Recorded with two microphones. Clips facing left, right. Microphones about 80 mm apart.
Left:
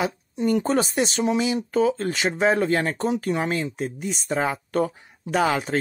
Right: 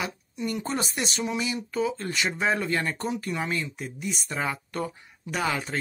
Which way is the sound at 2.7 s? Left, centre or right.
Left.